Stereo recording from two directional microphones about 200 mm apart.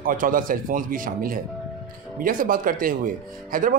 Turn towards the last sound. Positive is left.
turn(degrees=-45)  # may be behind; listen again after turning